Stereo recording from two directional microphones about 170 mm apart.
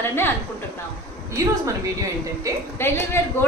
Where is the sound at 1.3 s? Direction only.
20° right (ahead or behind).